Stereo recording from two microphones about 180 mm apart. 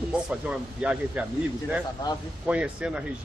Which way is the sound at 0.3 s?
5° right (ahead or behind).